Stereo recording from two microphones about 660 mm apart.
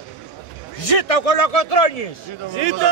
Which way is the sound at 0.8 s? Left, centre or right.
Left.